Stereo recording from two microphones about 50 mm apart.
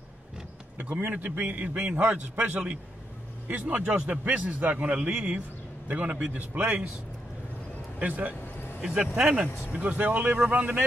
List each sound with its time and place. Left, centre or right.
0.7 s a man's voice: right
8.0 s a man's voice: right
8.8 s speech: centre
9.7 s a man's voice: right